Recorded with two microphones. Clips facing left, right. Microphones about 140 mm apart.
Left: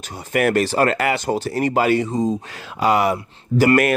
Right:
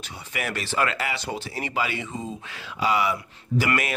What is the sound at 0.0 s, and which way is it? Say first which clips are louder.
Speech: left 13 dB; 45° left (ahead or behind).